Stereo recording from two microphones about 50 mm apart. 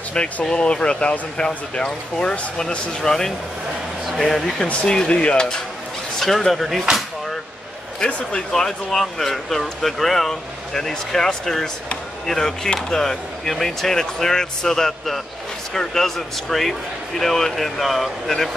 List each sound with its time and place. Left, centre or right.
0.1 s speech: centre
4.8 s speech: centre
6.1 s speech: centre
8.5 s speech: centre